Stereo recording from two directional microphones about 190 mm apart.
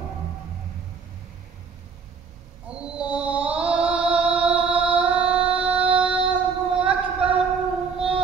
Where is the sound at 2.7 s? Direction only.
5° right (ahead or behind).